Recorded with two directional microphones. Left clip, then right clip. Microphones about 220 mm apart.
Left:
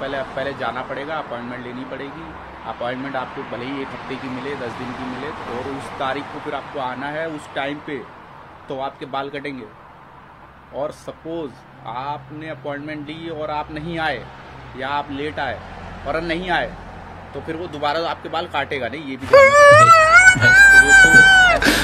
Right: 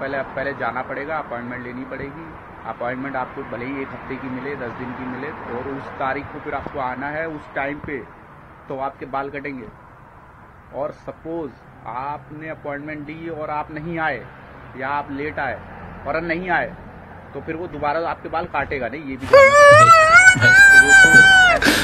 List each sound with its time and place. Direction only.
0.0 s speech: centre (ahead or behind)
2.8 s speech: centre (ahead or behind)
5.9 s speech: centre (ahead or behind)
11.3 s a man's voice: centre (ahead or behind)